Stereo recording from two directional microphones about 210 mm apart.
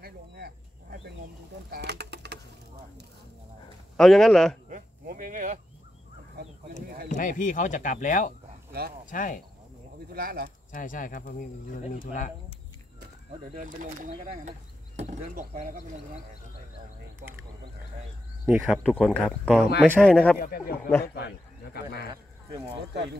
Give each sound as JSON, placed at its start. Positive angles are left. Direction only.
{"t": 0.0, "sound": "a sound", "side_deg": -50}
{"t": 1.7, "sound": "bird", "side_deg": -50}
{"t": 3.9, "sound": "speech", "side_deg": 0}
{"t": 4.6, "sound": "a sound", "side_deg": -40}
{"t": 7.1, "sound": "speech", "side_deg": 35}
{"t": 10.1, "sound": "speech", "side_deg": -45}
{"t": 10.7, "sound": "speech", "side_deg": 40}
{"t": 13.6, "sound": "speech", "side_deg": -40}
{"t": 18.4, "sound": "speech", "side_deg": 0}
{"t": 20.3, "sound": "speech", "side_deg": 45}
{"t": 22.1, "sound": "speech", "side_deg": -25}